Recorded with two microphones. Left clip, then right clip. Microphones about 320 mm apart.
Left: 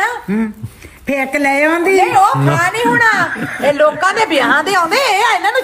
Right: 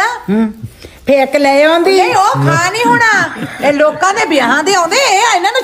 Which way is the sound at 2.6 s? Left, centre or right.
Right.